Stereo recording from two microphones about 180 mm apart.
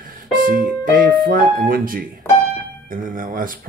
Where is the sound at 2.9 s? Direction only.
50° right (ahead or behind).